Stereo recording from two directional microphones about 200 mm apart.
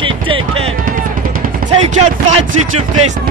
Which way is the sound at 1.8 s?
35° right (ahead or behind).